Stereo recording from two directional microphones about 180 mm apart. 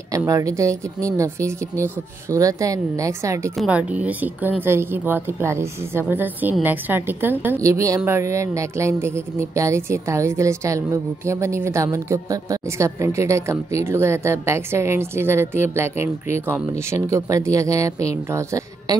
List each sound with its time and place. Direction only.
0.1 s a woman's voice: 20° right (ahead or behind)